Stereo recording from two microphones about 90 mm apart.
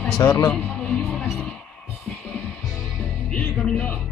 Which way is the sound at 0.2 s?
35° left (ahead or behind).